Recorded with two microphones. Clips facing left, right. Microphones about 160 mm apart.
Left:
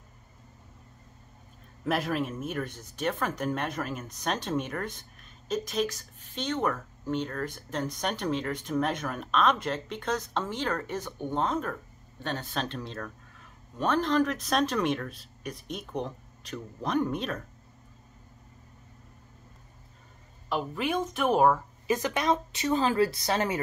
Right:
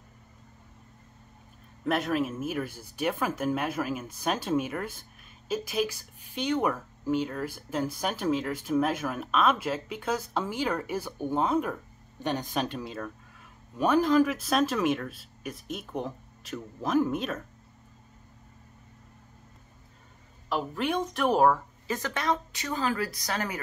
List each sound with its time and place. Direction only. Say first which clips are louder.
1.9 s speech: right 2 dB; centre (ahead or behind)
20.4 s a woman's voice: right 1 dB; centre (ahead or behind)
21.8 s speech: left 3 dB; 20° left (ahead or behind)